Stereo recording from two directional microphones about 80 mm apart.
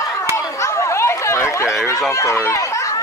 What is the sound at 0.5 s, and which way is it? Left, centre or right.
Chatter, left.